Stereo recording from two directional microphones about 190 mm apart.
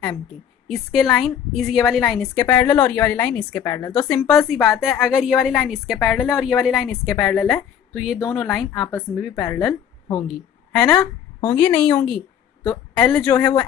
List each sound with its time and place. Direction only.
0.7 s a woman's voice: centre (ahead or behind)
9.3 s a woman's voice: 15° left (ahead or behind)
13.3 s speech: 20° left (ahead or behind)